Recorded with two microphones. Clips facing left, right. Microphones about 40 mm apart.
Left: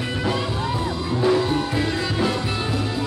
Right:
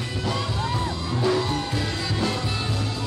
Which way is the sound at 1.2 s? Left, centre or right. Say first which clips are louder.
Left 4 dB; centre.